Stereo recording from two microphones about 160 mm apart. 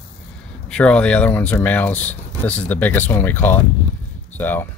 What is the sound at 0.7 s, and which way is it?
Speech, 5° left (ahead or behind).